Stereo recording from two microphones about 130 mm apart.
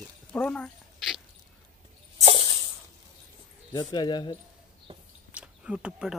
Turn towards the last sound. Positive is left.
turn(degrees=-5)  # may be behind; listen again after turning